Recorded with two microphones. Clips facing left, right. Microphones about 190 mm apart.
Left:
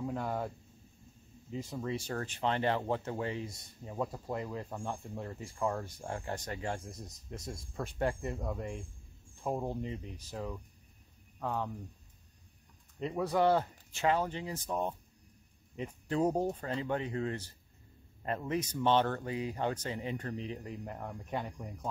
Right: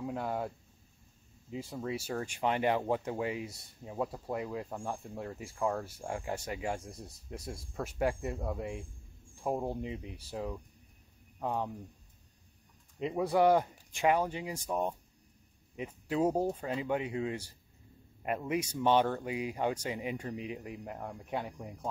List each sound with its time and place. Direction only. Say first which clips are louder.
0.0 s speech: even; 5° right (ahead or behind)
1.5 s speech: even; 10° right (ahead or behind)
13.0 s speech: right 2 dB; 10° right (ahead or behind)